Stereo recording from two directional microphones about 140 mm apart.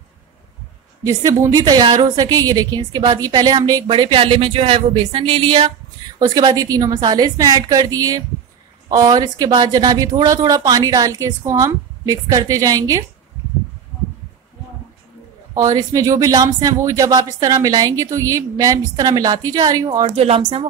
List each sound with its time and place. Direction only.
1.0 s speech: 25° right (ahead or behind)
3.8 s speech: 40° right (ahead or behind)
6.1 s speech: 30° right (ahead or behind)
15.5 s speech: 25° right (ahead or behind)
20.2 s speech: 45° right (ahead or behind)